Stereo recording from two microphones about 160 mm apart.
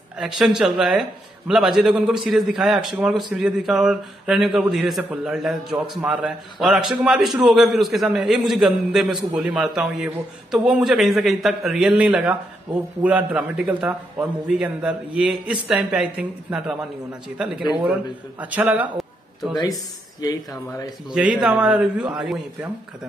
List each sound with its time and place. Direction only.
0.2 s a man's voice: 5° right (ahead or behind)
20.2 s speech: 25° left (ahead or behind)
21.1 s a man's voice: 5° right (ahead or behind)